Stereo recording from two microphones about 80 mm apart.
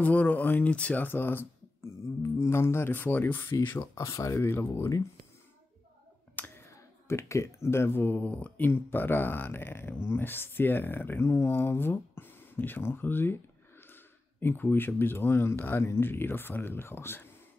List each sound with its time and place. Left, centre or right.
0.0 s speech: centre
3.9 s speech: left
6.3 s speech: left